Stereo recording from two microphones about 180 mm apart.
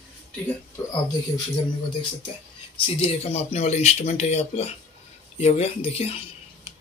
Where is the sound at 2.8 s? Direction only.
35° left (ahead or behind).